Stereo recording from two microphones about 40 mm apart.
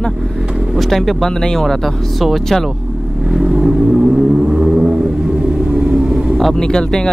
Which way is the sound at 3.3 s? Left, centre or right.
Centre.